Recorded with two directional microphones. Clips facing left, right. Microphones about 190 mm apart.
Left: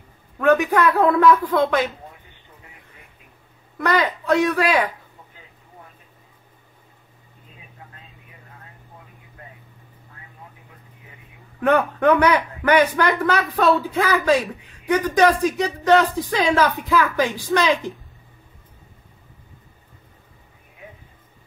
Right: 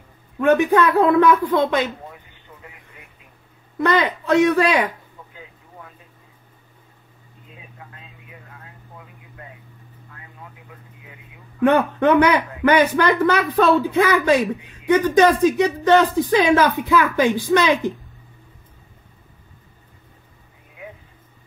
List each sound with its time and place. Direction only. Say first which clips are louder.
0.4 s speech: right 2 dB; 25° right (ahead or behind)
3.7 s speech: right 2 dB; 25° right (ahead or behind)
11.6 s speech: right 1 dB; 25° right (ahead or behind)